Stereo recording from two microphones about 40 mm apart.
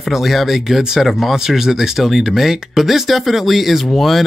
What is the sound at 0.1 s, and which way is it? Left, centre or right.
Speech, centre.